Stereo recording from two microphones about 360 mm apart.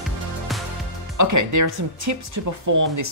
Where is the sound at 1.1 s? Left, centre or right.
Right.